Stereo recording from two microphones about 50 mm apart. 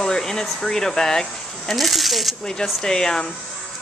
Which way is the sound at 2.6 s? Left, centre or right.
Centre.